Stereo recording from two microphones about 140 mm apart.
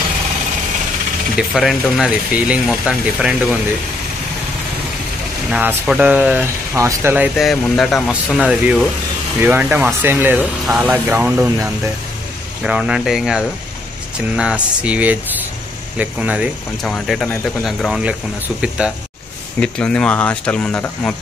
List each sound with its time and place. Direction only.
1.3 s speech: centre (ahead or behind)
5.5 s speech: 10° right (ahead or behind)
7.3 s speech: centre (ahead or behind)
16.8 s speech: centre (ahead or behind)
19.6 s speech: 5° left (ahead or behind)